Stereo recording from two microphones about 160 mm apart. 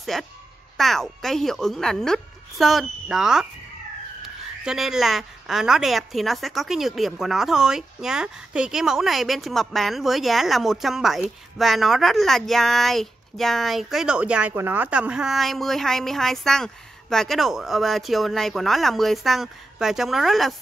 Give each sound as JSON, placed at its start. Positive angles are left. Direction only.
{"t": 0.0, "sound": "a woman's voice", "side_deg": 0}
{"t": 4.6, "sound": "a woman's voice", "side_deg": 0}